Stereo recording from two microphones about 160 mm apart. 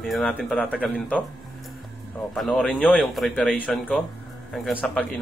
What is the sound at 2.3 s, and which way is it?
A man's voice, centre (ahead or behind).